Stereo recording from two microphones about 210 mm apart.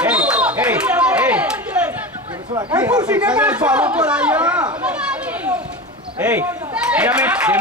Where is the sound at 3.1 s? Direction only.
5° right (ahead or behind).